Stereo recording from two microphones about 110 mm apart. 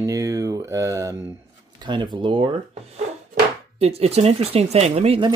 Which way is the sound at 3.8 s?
70° right (ahead or behind).